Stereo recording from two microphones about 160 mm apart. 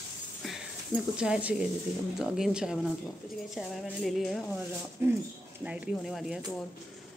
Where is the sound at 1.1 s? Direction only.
5° right (ahead or behind).